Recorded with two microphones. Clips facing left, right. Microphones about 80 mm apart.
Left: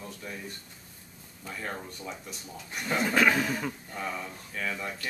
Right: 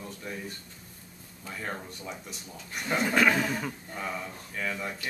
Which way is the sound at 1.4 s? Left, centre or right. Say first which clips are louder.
Even; centre.